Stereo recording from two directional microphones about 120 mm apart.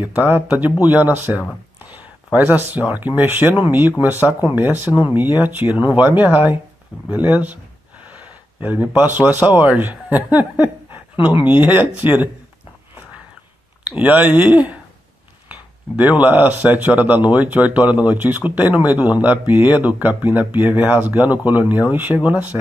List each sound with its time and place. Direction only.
0.1 s speech: 15° right (ahead or behind)
4.6 s speech: 15° right (ahead or behind)
10.3 s a sound: 15° right (ahead or behind)
11.1 s speech: 45° left (ahead or behind)
11.4 s speech: 15° right (ahead or behind)
13.8 s speech: 15° right (ahead or behind)